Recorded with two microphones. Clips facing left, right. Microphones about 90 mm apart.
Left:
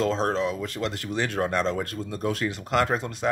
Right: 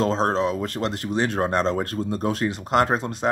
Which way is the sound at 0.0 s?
30° right (ahead or behind).